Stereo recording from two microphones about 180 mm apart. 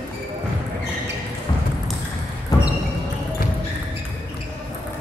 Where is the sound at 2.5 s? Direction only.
20° left (ahead or behind).